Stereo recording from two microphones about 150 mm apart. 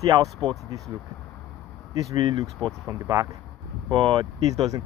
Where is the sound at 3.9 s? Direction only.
40° right (ahead or behind).